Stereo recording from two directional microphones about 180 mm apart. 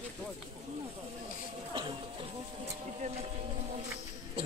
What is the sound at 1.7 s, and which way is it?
Music, 25° right (ahead or behind).